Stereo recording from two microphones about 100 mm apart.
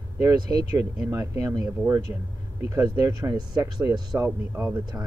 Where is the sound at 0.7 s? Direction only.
25° right (ahead or behind).